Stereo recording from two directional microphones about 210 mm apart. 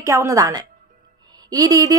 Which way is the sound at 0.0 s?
15° right (ahead or behind).